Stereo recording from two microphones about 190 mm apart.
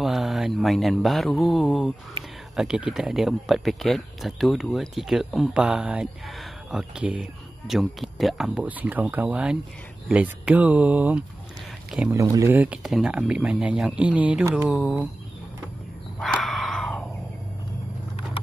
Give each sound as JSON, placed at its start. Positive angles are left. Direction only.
{"t": 0.0, "sound": "speech", "side_deg": 0}
{"t": 12.2, "sound": "speech", "side_deg": -15}
{"t": 16.3, "sound": "a sound", "side_deg": 0}